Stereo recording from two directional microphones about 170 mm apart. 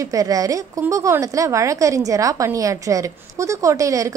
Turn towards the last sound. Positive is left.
turn(degrees=-20)  # may be behind; listen again after turning